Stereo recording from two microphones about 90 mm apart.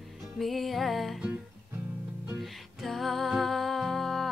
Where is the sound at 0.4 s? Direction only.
Centre (ahead or behind).